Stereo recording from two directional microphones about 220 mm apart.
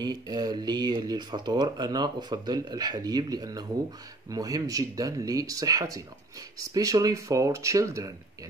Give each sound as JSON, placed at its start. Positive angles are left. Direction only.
{"t": 0.0, "sound": "speech", "side_deg": -20}